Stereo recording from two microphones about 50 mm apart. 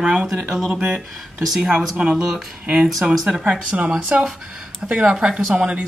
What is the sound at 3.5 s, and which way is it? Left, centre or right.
Speech, right.